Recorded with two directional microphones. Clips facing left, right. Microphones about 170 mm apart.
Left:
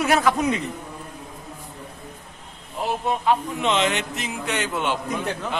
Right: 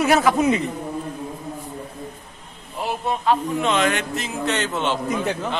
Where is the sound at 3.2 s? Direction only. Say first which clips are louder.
Right 3 dB; 20° left (ahead or behind).